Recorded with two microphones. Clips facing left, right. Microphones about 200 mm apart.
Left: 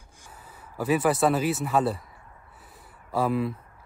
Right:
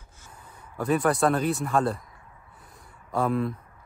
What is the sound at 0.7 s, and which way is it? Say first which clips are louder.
Speech: even; 5° left (ahead or behind).